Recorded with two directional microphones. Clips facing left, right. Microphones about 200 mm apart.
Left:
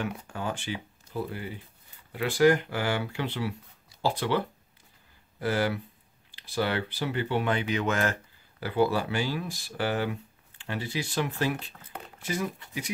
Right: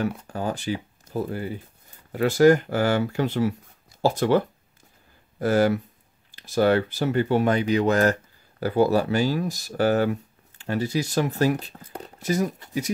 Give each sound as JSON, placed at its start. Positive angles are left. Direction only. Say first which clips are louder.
{"t": 0.3, "sound": "speech", "louder": "right 6 dB", "side_deg": -40}